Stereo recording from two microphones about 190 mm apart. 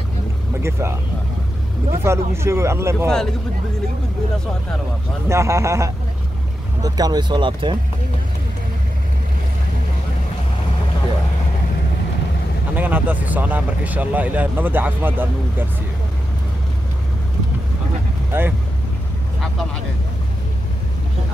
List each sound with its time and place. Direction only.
0.6 s speech: 15° right (ahead or behind)
2.0 s speech: 15° right (ahead or behind)
5.3 s speech: 15° right (ahead or behind)
12.7 s speech: 10° right (ahead or behind)
18.3 s speech: 10° right (ahead or behind)